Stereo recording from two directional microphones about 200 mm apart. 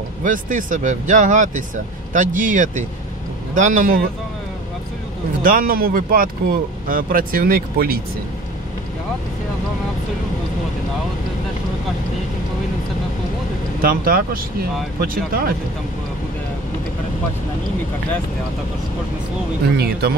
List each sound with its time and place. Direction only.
0.2 s speech: 40° right (ahead or behind)
5.4 s speech: 45° right (ahead or behind)
13.7 s speech: 45° right (ahead or behind)
19.8 s speech: 50° right (ahead or behind)